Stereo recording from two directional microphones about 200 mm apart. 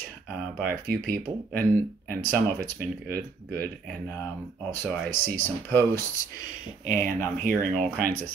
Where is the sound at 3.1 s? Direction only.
50° right (ahead or behind).